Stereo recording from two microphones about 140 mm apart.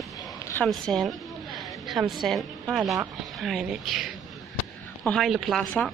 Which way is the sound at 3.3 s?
Centre (ahead or behind).